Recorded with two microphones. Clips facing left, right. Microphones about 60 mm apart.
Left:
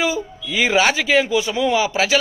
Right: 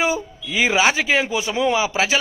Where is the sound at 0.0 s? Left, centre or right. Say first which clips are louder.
Even; right.